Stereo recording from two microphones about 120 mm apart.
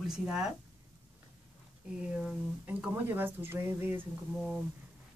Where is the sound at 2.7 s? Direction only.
15° right (ahead or behind).